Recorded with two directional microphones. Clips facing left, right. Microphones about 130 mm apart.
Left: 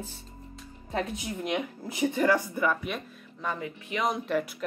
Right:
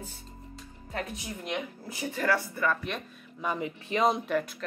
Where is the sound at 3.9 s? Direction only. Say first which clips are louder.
Right 4 dB; 30° right (ahead or behind).